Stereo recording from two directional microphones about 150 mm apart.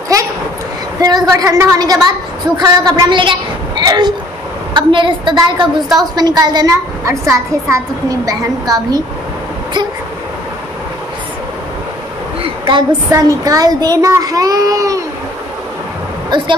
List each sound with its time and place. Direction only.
0.9 s a woman's voice: 25° right (ahead or behind)
12.4 s a sound: 35° right (ahead or behind)
13.1 s a woman's voice: 25° right (ahead or behind)
16.3 s speech: 30° right (ahead or behind)